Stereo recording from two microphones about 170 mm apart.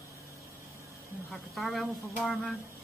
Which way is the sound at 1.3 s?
Centre (ahead or behind).